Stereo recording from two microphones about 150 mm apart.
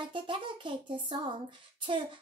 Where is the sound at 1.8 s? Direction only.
35° right (ahead or behind).